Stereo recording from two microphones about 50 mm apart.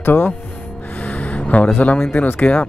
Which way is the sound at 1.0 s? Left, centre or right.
Left.